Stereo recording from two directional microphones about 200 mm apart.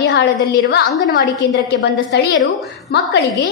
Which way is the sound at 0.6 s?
50° left (ahead or behind).